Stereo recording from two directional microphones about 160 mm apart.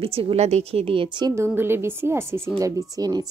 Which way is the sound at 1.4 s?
15° right (ahead or behind).